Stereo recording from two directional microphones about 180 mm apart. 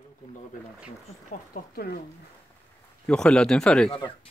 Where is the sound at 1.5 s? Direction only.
60° left (ahead or behind).